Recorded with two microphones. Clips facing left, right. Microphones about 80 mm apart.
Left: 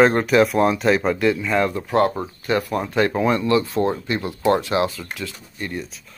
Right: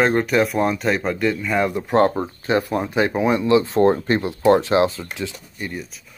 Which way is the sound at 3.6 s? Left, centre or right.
Right.